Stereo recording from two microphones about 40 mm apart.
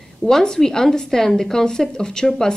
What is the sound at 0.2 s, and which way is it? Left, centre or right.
Speech, centre.